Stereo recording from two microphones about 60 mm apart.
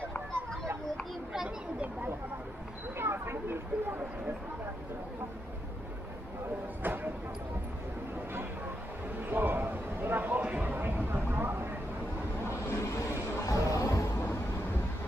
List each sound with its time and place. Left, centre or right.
3.0 s speech: right
6.8 s speech: right
9.2 s a sound: right
12.8 s vehicle: left
13.5 s music: left